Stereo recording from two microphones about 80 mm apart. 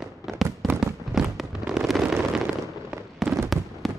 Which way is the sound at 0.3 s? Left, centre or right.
Centre.